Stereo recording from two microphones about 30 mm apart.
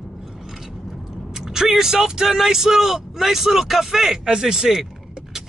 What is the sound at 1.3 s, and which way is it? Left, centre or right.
A man's voice, centre.